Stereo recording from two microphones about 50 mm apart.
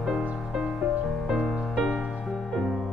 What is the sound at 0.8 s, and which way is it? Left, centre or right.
Music, centre.